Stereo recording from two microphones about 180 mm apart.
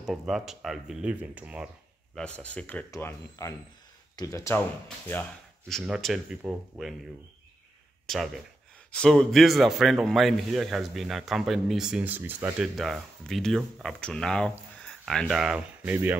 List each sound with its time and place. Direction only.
0.0 s speech: centre (ahead or behind)
2.1 s speech: 5° left (ahead or behind)
8.1 s speech: 5° left (ahead or behind)